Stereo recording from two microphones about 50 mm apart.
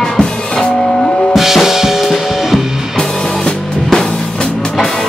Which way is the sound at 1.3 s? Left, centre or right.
Centre.